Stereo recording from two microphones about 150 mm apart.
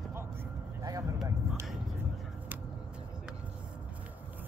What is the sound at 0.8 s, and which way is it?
Vehicle, 20° right (ahead or behind).